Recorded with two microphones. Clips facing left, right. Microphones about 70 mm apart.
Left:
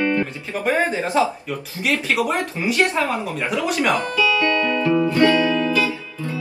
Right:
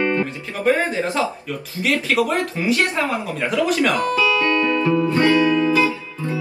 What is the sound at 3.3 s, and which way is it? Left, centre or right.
Speech, centre.